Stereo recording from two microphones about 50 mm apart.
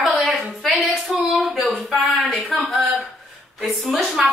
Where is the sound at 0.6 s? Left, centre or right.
Centre.